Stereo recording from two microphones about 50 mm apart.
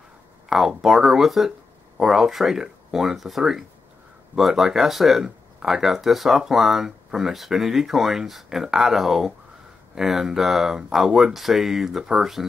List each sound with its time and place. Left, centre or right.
0.5 s speech: centre